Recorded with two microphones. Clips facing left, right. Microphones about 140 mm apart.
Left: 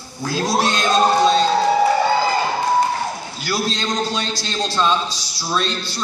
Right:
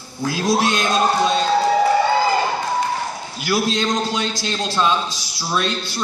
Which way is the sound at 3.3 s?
15° right (ahead or behind).